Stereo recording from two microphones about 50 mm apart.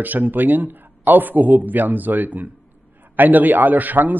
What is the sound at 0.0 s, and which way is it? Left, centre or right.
A man's voice, right.